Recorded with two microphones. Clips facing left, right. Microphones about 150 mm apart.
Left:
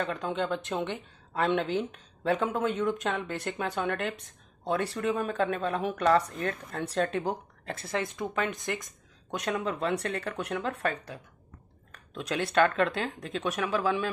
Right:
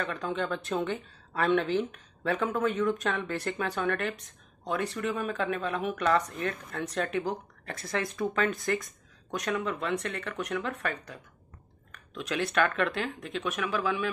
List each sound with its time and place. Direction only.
0.0 s a woman's voice: 25° left (ahead or behind)